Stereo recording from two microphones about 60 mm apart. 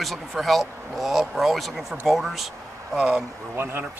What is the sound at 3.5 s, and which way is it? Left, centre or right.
Speech, right.